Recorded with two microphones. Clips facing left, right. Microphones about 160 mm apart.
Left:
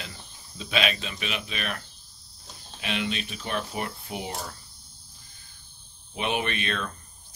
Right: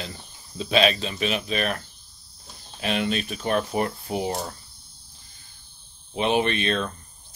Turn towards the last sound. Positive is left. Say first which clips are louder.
# right 6 dB
turn(degrees=-30)  # may be behind; listen again after turning